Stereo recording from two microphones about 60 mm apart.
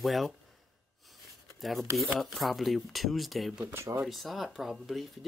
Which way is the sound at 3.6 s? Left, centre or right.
Right.